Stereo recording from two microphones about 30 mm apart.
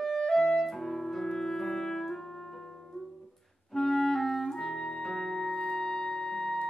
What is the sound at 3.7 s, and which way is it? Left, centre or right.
Clarinet, centre.